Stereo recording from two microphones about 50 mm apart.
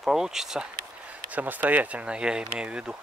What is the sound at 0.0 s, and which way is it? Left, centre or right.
Speech, centre.